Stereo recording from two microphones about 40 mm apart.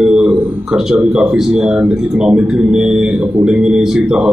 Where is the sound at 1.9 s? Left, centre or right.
Centre.